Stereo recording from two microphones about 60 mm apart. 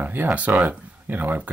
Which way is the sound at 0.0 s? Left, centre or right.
Right.